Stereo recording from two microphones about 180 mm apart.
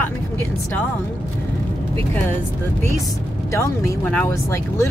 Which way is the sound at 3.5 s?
15° left (ahead or behind).